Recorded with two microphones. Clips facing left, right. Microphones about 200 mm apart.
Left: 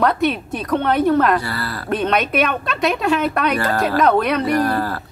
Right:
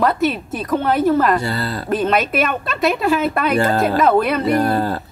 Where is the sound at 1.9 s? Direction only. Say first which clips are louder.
Right 1 dB; centre (ahead or behind).